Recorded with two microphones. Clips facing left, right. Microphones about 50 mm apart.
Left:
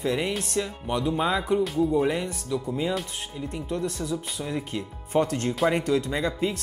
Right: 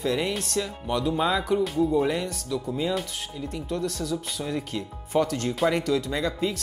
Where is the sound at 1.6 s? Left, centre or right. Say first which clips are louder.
Even; centre.